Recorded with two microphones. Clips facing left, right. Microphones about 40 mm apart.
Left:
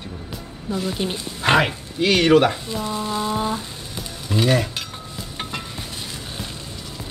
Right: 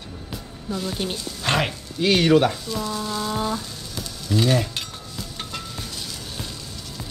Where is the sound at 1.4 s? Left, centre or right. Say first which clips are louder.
Left 6 dB; centre.